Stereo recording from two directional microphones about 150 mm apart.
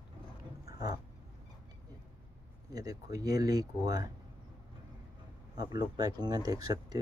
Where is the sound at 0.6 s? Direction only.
25° right (ahead or behind).